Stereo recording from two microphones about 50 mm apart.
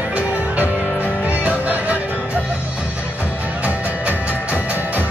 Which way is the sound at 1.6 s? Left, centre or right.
Right.